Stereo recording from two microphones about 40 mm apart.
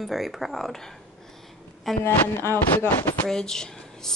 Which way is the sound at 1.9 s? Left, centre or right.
Centre.